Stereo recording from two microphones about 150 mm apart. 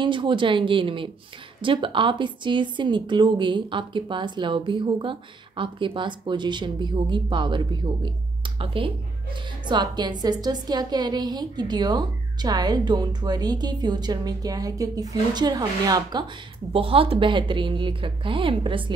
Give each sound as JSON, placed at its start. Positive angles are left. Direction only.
{"t": 0.0, "sound": "a woman's voice", "side_deg": -35}
{"t": 16.7, "sound": "a woman's voice", "side_deg": -40}